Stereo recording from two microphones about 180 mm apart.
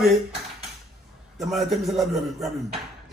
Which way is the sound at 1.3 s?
Centre (ahead or behind).